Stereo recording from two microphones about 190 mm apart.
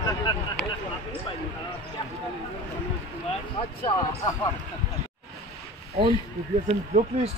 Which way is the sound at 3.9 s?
25° left (ahead or behind).